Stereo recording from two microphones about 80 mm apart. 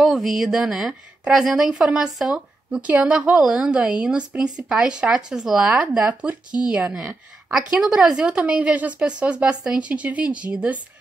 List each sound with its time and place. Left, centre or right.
0.0 s a woman's voice: centre